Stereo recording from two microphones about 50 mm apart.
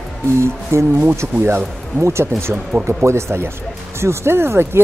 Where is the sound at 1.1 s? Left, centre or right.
Right.